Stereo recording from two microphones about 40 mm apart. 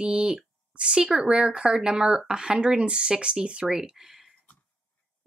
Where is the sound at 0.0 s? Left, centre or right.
Right.